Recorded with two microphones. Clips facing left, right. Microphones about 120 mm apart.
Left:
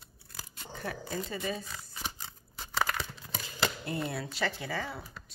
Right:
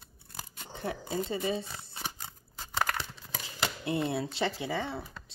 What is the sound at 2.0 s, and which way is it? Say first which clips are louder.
Scissors: right 1 dB; 45° right (ahead or behind).